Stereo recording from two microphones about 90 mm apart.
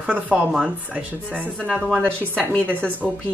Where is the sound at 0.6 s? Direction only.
15° right (ahead or behind).